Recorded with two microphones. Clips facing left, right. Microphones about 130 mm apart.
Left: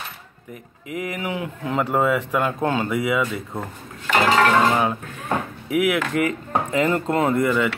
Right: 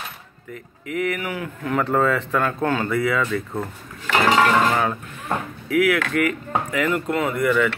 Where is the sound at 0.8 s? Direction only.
20° left (ahead or behind).